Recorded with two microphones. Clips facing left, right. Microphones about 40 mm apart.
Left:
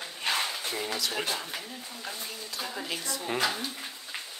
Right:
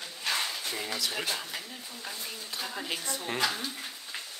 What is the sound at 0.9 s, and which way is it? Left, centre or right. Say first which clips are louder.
Speech: left 1 dB; centre.